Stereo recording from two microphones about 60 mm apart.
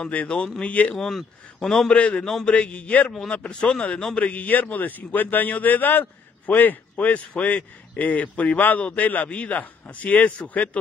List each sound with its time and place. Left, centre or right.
0.1 s a man's voice: left
0.9 s speech: centre
1.9 s a man's voice: centre
2.2 s speech: centre
2.5 s a man's voice: centre
3.4 s a man's voice: centre